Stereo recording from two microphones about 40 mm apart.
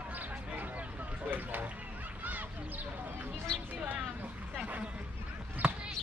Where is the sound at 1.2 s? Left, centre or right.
Right.